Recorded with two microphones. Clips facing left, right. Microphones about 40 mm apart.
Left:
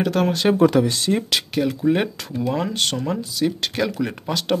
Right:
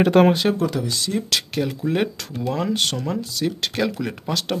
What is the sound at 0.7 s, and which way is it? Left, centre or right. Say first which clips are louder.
Speech: left 7 dB; left.